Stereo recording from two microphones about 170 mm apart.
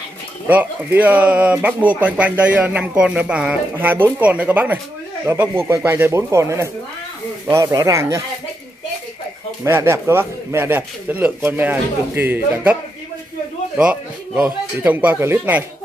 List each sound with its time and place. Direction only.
0.5 s speech: 10° right (ahead or behind)
9.7 s speech: 15° right (ahead or behind)
13.7 s speech: 5° right (ahead or behind)